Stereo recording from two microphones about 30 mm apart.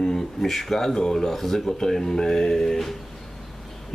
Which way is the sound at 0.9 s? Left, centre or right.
Centre.